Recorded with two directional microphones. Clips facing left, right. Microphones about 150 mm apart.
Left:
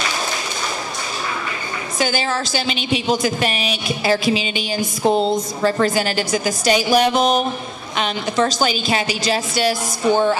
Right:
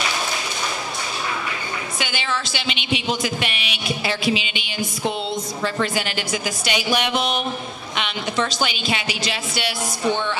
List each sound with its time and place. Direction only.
2.0 s a woman's voice: 40° left (ahead or behind)